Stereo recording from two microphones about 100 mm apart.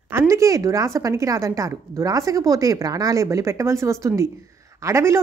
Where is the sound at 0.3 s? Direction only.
35° right (ahead or behind).